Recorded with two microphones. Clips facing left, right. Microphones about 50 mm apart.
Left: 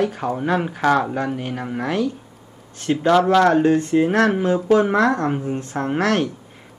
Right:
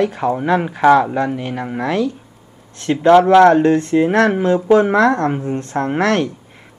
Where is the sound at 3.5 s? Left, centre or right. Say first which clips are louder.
Right 3 dB; right.